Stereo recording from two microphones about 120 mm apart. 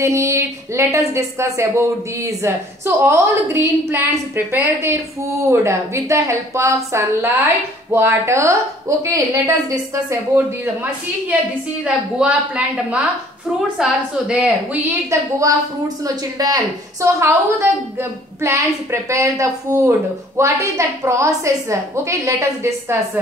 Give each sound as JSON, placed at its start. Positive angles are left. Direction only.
{"t": 0.0, "sound": "a woman's voice", "side_deg": -25}
{"t": 11.8, "sound": "a woman's voice", "side_deg": -10}
{"t": 15.0, "sound": "a woman's voice", "side_deg": -25}